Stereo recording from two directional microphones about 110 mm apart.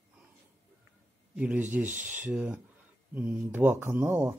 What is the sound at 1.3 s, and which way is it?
Speech, 15° right (ahead or behind).